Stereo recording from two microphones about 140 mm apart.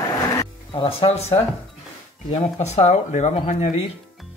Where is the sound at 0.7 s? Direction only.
40° left (ahead or behind); by 3.8 s 55° left (ahead or behind).